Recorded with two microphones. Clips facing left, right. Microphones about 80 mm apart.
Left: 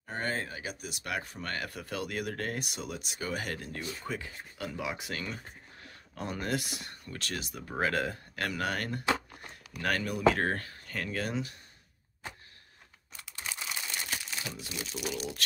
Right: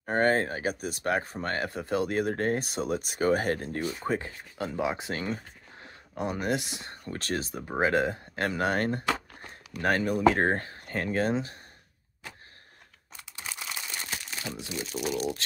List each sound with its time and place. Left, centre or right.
0.0 s speech: right
13.5 s crumpling: centre
14.6 s speech: right